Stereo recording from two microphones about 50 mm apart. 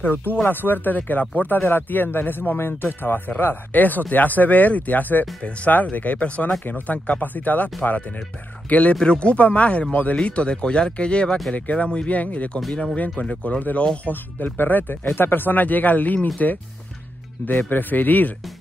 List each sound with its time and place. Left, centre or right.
0.0 s speech: left
17.5 s speech: left